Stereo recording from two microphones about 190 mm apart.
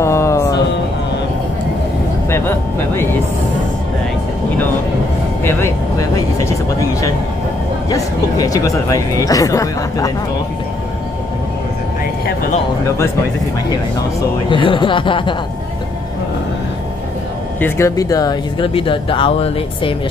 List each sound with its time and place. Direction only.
0.0 s music: 15° left (ahead or behind)
2.2 s speech: 15° left (ahead or behind)
5.4 s speech: 10° left (ahead or behind)
12.8 s speech: 15° left (ahead or behind)
14.5 s speech: 25° left (ahead or behind)
17.6 s speech: 15° left (ahead or behind); by 20.0 s 30° left (ahead or behind)